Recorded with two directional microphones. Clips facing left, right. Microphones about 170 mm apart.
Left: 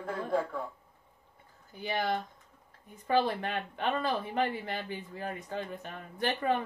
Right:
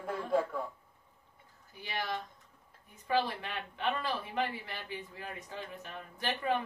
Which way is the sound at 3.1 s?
50° left (ahead or behind).